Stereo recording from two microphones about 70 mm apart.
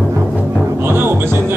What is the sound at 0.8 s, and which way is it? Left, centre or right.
Music, right.